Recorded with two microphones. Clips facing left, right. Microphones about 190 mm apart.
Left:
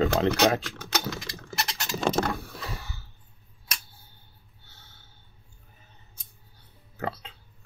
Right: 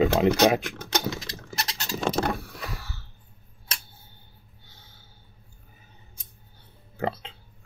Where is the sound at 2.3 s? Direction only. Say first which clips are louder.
Even; 15° left (ahead or behind).